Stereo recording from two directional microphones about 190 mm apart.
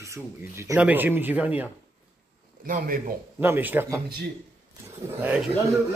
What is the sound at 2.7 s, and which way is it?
Speech, 50° right (ahead or behind).